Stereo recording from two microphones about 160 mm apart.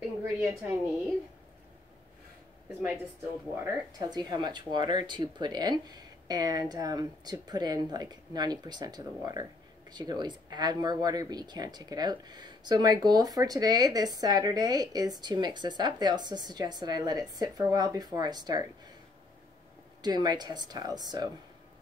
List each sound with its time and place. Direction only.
0.0 s a sound: centre (ahead or behind)
3.5 s speech: 15° right (ahead or behind)
4.1 s speech: 25° right (ahead or behind)
20.0 s speech: 25° right (ahead or behind)